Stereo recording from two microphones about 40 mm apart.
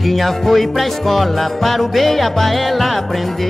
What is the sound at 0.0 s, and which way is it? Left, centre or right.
Music, centre.